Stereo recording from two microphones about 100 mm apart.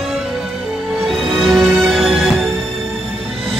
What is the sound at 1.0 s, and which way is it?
Music, centre (ahead or behind).